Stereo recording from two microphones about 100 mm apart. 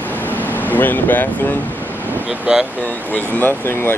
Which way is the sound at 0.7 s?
20° left (ahead or behind).